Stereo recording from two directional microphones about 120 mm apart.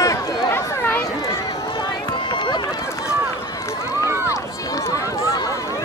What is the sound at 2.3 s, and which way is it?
Run, 40° left (ahead or behind).